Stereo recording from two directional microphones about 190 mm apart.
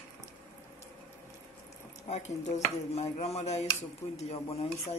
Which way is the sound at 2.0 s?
35° left (ahead or behind).